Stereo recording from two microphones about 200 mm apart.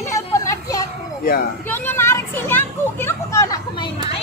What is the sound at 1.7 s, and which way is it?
Speech, 10° left (ahead or behind).